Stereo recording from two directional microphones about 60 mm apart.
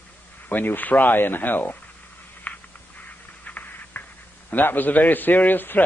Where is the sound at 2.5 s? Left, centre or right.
Left.